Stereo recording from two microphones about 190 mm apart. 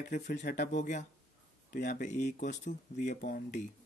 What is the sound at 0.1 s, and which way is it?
Speech, 40° left (ahead or behind).